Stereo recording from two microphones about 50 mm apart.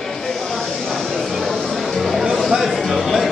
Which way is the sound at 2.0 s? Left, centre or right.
Centre.